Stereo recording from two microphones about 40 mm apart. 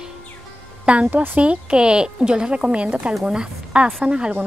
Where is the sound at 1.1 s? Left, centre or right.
Right.